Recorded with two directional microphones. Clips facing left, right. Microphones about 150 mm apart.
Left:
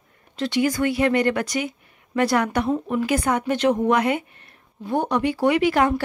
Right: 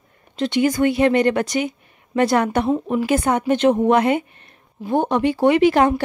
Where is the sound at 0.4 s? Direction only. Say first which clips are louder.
Right 4 dB; 20° right (ahead or behind).